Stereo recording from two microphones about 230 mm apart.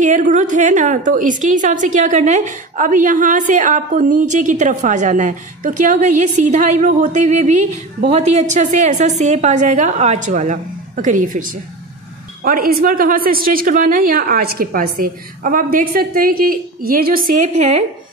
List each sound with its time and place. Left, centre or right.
0.0 s a woman's voice: right
12.4 s a woman's voice: right